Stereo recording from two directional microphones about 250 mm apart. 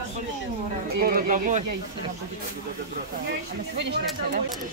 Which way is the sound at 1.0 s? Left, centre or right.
Right.